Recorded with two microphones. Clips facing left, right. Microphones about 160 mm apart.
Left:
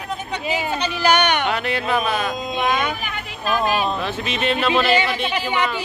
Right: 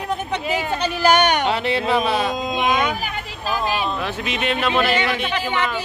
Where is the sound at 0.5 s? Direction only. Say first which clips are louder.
Even; 45° right (ahead or behind).